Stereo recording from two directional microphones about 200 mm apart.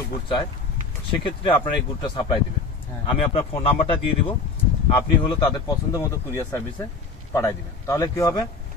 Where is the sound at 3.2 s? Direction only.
30° left (ahead or behind).